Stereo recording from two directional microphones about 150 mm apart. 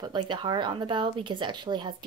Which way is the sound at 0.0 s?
30° right (ahead or behind).